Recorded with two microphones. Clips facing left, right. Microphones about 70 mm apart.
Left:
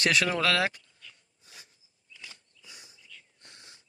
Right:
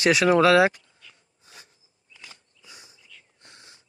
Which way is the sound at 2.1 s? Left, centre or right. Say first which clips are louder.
Right 1 dB; right.